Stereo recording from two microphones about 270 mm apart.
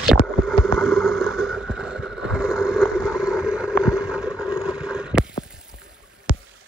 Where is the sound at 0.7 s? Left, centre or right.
Centre.